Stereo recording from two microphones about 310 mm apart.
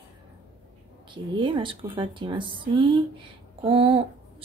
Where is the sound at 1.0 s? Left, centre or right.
Centre.